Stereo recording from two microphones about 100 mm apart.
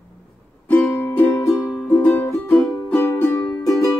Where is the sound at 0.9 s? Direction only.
20° left (ahead or behind).